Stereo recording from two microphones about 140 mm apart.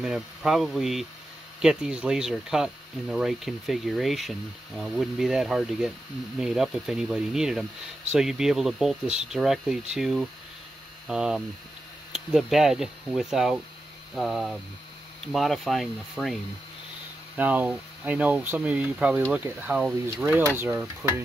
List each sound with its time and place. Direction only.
0.0 s speech: 5° right (ahead or behind)
17.4 s speech: 10° right (ahead or behind)